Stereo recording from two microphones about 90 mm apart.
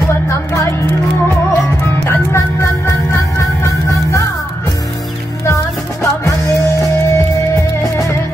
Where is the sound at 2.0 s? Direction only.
30° left (ahead or behind).